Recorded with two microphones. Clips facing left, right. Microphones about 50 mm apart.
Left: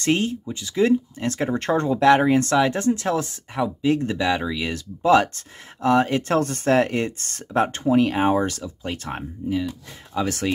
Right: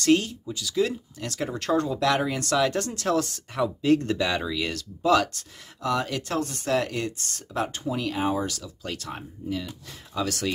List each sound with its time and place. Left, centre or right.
0.0 s speech: left
9.4 s speech: centre
10.1 s speech: left